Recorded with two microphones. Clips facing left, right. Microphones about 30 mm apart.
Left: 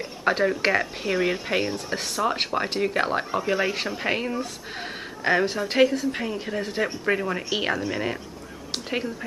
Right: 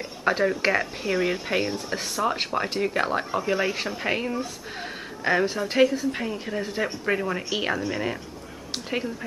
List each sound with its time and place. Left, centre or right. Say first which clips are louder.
0.0 s speech: left 1 dB; centre